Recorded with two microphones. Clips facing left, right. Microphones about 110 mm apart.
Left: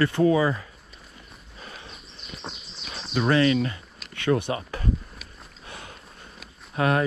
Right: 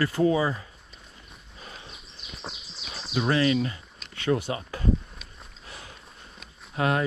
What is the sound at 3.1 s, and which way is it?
Speech, 50° left (ahead or behind).